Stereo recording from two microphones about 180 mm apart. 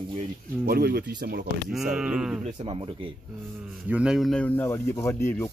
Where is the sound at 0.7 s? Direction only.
60° right (ahead or behind).